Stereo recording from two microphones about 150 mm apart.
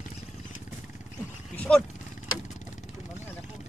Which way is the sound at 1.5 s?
10° left (ahead or behind).